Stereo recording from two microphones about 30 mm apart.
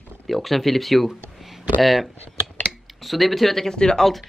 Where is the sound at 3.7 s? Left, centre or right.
Left.